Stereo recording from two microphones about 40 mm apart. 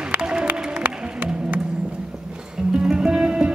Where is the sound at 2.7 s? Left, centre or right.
Right.